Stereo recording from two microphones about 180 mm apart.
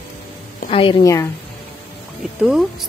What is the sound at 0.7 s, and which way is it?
Speech, 30° left (ahead or behind).